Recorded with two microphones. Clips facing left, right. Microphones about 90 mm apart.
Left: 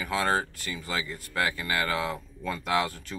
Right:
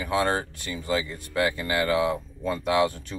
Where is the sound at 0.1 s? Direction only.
25° right (ahead or behind).